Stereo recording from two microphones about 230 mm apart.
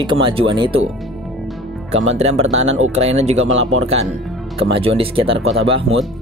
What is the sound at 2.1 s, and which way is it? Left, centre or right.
Speech, right.